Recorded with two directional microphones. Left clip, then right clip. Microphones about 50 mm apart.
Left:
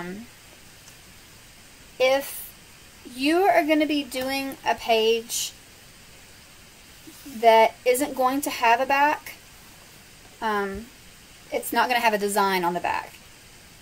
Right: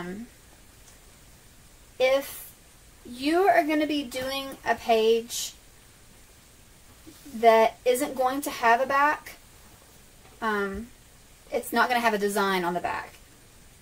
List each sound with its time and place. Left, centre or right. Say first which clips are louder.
2.0 s a woman's voice: left 2 dB; left
7.4 s a woman's voice: left 2 dB; left
10.4 s a woman's voice: left 2 dB; left